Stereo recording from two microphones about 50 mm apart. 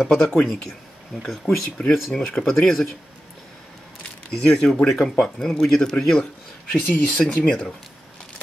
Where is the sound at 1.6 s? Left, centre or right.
Centre.